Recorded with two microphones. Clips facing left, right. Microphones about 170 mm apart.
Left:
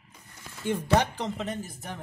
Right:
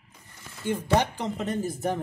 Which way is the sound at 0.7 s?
10° right (ahead or behind).